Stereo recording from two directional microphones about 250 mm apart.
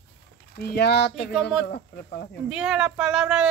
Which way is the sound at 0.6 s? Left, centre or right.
Left.